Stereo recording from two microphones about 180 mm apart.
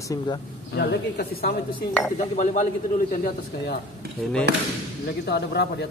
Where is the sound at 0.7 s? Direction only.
60° left (ahead or behind).